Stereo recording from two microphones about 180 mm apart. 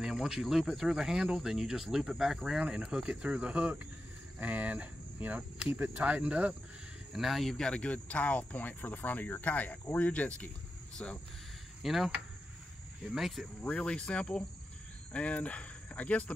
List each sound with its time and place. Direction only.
0.0 s speech: 5° right (ahead or behind)